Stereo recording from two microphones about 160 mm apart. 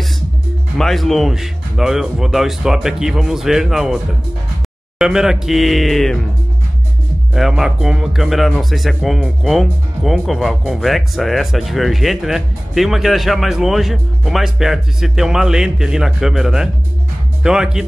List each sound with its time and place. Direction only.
0.7 s speech: centre (ahead or behind)
7.3 s speech: centre (ahead or behind)